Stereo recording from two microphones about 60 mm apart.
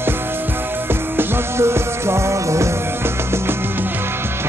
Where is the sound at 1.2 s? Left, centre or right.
Right.